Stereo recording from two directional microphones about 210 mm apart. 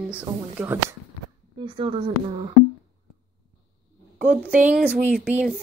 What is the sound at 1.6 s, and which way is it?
Speech, 25° right (ahead or behind).